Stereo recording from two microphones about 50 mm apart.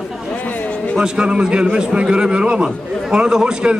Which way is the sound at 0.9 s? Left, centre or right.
Centre.